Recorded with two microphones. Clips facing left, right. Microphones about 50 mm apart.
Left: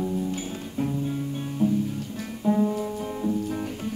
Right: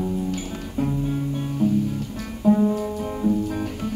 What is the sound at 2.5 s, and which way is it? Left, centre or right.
Music, centre.